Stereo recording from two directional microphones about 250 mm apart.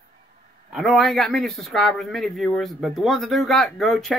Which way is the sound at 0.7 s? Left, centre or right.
Centre.